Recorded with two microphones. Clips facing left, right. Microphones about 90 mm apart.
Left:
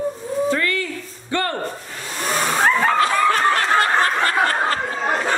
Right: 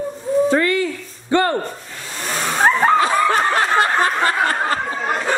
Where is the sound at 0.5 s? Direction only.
25° right (ahead or behind).